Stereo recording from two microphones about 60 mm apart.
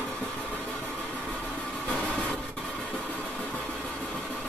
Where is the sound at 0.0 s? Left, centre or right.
Centre.